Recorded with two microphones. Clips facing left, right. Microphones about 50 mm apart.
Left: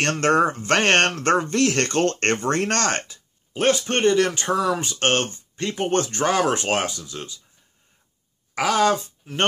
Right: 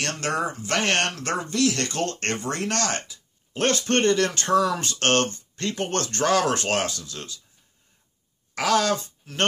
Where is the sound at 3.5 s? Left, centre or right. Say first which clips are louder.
Left 2 dB; centre.